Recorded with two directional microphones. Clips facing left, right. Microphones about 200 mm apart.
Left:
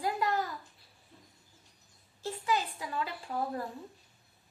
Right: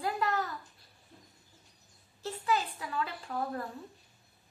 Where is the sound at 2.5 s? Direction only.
15° left (ahead or behind).